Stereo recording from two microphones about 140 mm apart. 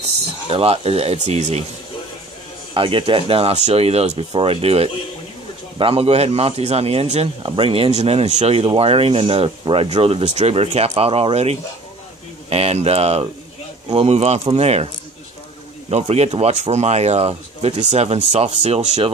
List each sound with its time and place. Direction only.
0.5 s speech: 45° right (ahead or behind)
2.7 s speech: 40° right (ahead or behind)
15.9 s speech: 50° right (ahead or behind)